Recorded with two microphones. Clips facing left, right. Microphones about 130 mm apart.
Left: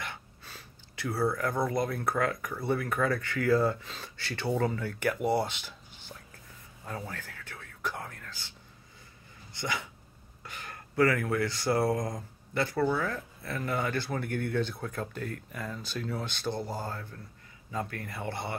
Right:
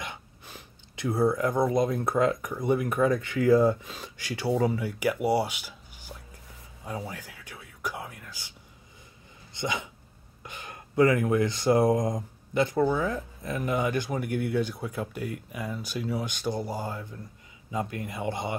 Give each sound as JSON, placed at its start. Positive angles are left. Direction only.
{"t": 0.0, "sound": "speech", "side_deg": -15}
{"t": 6.8, "sound": "whispering", "side_deg": -10}
{"t": 9.5, "sound": "speech", "side_deg": -20}